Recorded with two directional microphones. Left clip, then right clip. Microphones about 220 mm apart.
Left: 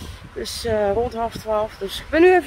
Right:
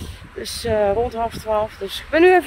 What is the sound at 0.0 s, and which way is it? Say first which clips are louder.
Speech: left 1 dB; 10° left (ahead or behind).